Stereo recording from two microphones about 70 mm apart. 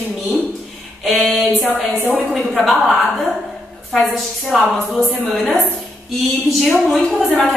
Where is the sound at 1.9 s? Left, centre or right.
Right.